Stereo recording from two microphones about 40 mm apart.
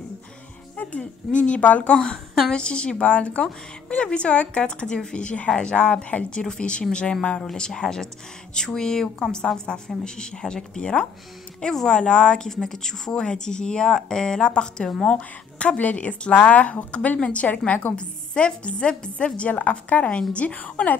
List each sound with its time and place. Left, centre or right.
0.7 s a woman's voice: left
2.5 s a woman's voice: left
6.4 s a woman's voice: left
11.6 s speech: centre
11.9 s a woman's voice: left
12.4 s a woman's voice: centre; by 15.8 s left
15.8 s a woman's voice: left
17.9 s a woman's voice: left